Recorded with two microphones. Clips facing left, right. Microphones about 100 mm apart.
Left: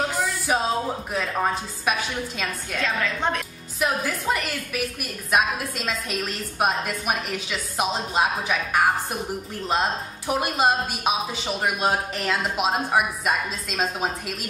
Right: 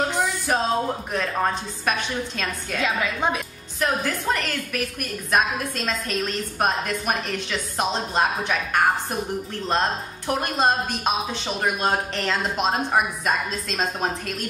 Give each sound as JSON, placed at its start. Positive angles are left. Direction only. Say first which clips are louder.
{"t": 0.1, "sound": "music", "louder": "right 1 dB", "side_deg": 5}
{"t": 1.1, "sound": "a woman's voice", "louder": "even", "side_deg": 5}
{"t": 2.8, "sound": "a woman's voice", "louder": "right 1 dB", "side_deg": -10}
{"t": 3.8, "sound": "a woman's voice", "louder": "right 1 dB", "side_deg": 5}